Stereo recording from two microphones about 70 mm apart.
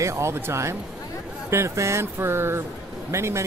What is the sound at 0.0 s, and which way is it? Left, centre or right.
Speech, right.